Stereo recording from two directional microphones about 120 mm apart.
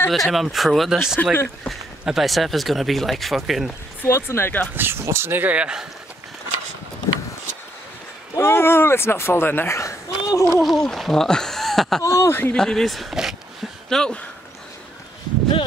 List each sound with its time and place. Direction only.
0.1 s speech: centre (ahead or behind)
1.2 s speech: 15° left (ahead or behind)
1.7 s speech: centre (ahead or behind)
4.0 s speech: 20° left (ahead or behind)
4.7 s speech: 20° right (ahead or behind)
8.4 s speech: 20° left (ahead or behind)
10.6 s speech: centre (ahead or behind)
12.0 s speech: 25° left (ahead or behind)
12.5 s speech: 5° left (ahead or behind)